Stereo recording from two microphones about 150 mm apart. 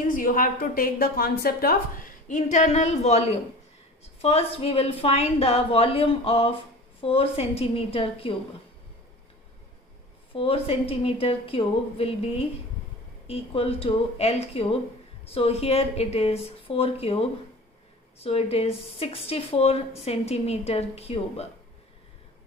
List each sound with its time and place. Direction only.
0.1 s a woman's voice: 65° left (ahead or behind); by 8.3 s 40° left (ahead or behind)
10.3 s speech: 40° left (ahead or behind)
13.3 s a woman's voice: 40° left (ahead or behind)